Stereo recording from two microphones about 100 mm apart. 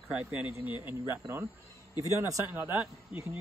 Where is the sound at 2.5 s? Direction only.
20° right (ahead or behind).